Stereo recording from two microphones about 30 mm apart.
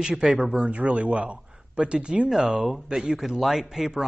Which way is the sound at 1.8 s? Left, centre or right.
Right.